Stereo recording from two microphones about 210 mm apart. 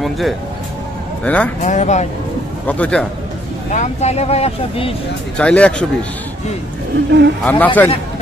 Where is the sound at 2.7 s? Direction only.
5° left (ahead or behind).